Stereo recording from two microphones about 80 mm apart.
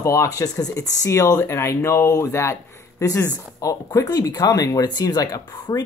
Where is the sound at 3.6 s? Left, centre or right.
Left.